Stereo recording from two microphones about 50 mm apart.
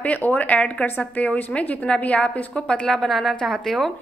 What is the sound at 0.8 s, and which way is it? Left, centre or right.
A woman's voice, left.